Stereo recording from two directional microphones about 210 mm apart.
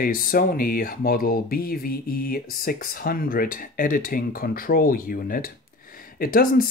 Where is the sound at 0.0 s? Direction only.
45° left (ahead or behind).